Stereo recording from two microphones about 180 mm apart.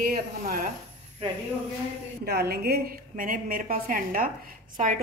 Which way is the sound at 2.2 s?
60° right (ahead or behind).